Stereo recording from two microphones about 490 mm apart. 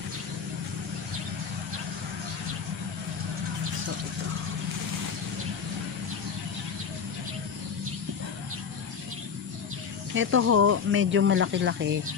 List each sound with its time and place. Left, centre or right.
10.1 s speech: right